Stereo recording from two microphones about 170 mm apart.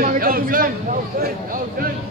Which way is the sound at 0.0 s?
60° right (ahead or behind).